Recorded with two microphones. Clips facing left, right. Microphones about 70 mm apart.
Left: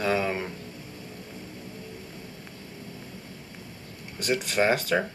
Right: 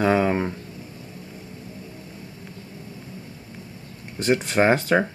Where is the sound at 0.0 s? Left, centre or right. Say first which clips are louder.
Right 6 dB; right.